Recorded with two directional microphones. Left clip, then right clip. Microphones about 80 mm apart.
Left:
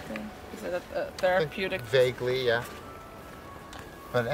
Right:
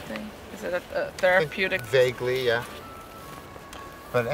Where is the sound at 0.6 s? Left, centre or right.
Right.